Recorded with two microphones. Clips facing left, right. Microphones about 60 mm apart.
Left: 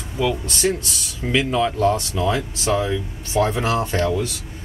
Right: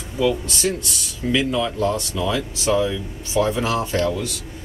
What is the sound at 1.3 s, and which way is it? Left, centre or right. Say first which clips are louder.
Speech: left 2 dB; left.